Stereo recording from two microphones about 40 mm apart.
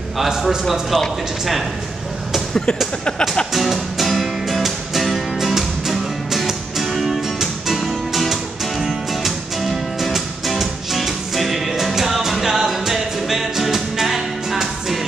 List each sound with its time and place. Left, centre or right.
0.2 s a man's voice: centre
0.7 s speech: centre
3.1 s speech: left
3.5 s music: centre